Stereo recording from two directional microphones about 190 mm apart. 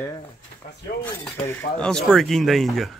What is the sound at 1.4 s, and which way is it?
Speech, 10° left (ahead or behind).